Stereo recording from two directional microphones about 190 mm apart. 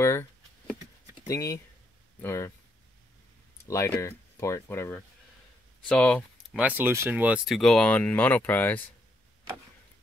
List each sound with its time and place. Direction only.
0.0 s speech: 15° left (ahead or behind)
3.6 s speech: 15° left (ahead or behind)
6.5 s speech: 10° right (ahead or behind); by 8.8 s 10° left (ahead or behind)